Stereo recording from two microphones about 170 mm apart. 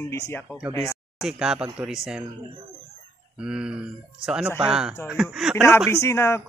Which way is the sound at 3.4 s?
5° right (ahead or behind).